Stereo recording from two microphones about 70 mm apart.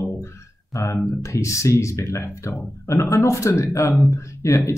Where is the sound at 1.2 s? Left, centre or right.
Left.